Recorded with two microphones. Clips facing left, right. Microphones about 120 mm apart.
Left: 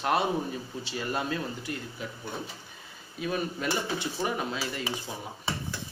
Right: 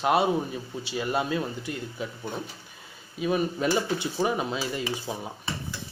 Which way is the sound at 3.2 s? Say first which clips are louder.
Right 5 dB; 20° right (ahead or behind).